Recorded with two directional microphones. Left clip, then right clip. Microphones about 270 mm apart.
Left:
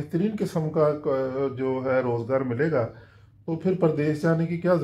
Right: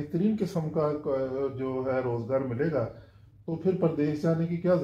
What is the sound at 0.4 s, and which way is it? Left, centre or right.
Speech, left.